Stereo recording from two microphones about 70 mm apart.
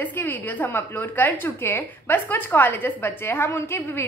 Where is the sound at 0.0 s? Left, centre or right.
Left.